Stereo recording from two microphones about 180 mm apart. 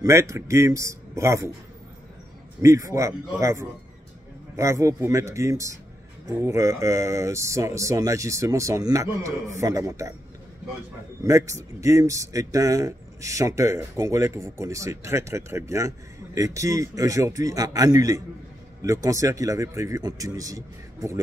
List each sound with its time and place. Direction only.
0.0 s speech: 15° right (ahead or behind)
2.6 s speech: 15° right (ahead or behind)
11.2 s a man's voice: 15° right (ahead or behind)